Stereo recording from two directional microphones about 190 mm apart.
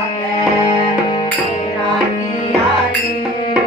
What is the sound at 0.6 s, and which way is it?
Music, 25° left (ahead or behind).